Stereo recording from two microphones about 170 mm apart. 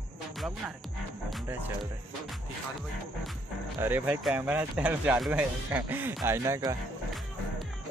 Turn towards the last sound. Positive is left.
turn(degrees=-20)  # may be behind; listen again after turning